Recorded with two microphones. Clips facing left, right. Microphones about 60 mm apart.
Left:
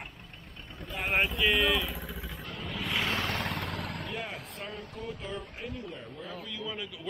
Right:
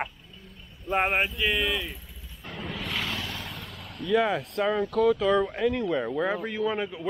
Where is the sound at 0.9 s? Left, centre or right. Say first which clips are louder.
Right 13 dB; left.